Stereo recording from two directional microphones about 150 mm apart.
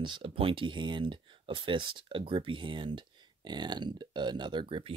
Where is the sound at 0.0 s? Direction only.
35° right (ahead or behind).